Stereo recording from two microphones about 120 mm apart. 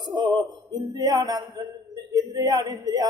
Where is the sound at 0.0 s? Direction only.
35° right (ahead or behind).